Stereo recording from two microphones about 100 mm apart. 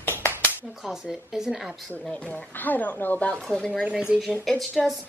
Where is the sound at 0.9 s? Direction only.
5° right (ahead or behind).